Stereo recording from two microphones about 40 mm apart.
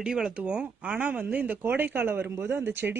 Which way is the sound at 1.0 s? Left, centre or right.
Right.